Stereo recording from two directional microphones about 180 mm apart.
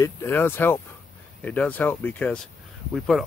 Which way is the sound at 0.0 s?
15° left (ahead or behind).